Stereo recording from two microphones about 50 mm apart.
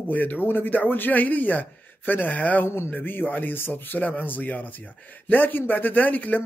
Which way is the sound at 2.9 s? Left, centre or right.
Left.